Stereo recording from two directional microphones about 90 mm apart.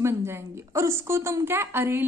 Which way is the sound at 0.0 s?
30° right (ahead or behind).